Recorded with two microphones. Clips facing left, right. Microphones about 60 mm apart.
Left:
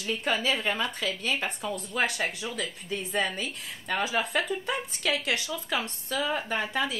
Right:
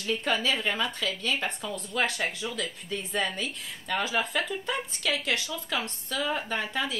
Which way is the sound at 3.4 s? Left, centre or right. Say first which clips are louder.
Even; left.